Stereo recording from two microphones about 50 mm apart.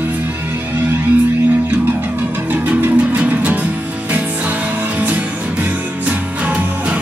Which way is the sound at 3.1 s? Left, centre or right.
Right.